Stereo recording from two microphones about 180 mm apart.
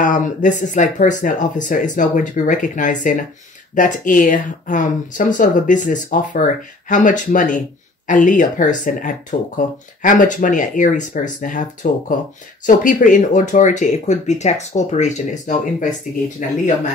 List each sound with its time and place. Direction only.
0.0 s speech: 45° left (ahead or behind)